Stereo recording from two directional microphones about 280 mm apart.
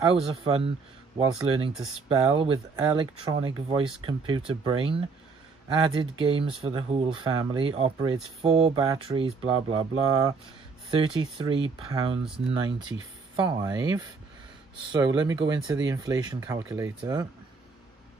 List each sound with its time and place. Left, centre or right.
0.1 s speech: centre